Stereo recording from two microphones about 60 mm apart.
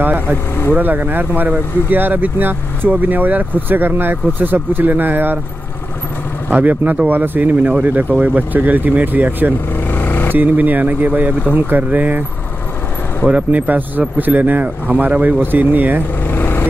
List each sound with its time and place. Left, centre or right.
0.0 s vehicle: right
0.7 s speech: right
6.5 s speech: right
9.8 s vehicle: left
10.3 s speech: right
13.3 s speech: right
16.3 s vehicle: left